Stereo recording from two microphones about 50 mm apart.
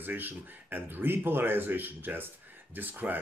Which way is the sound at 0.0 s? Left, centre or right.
Right.